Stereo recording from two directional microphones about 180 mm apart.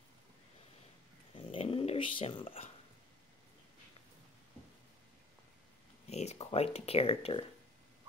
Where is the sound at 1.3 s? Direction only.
30° left (ahead or behind).